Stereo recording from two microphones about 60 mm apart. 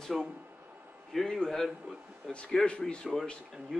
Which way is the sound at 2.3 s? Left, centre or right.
Centre.